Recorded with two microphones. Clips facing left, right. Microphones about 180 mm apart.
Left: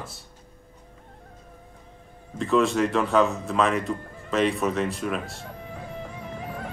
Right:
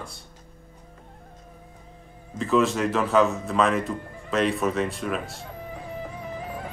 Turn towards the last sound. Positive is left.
turn(degrees=0)  # may be behind; listen again after turning